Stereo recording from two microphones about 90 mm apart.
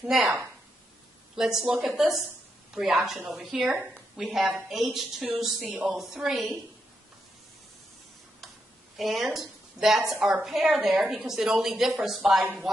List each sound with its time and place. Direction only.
0.0 s a woman's voice: 5° right (ahead or behind)
1.3 s a woman's voice: 5° right (ahead or behind)
5.6 s a sound: 15° right (ahead or behind)
5.9 s a woman's voice: 5° right (ahead or behind)
8.9 s a woman's voice: centre (ahead or behind)
12.7 s a sound: centre (ahead or behind)